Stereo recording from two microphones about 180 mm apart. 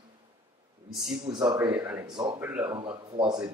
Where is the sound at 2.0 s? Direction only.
25° right (ahead or behind).